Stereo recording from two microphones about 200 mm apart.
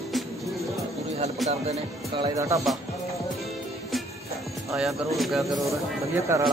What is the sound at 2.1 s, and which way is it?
Speech, 20° right (ahead or behind).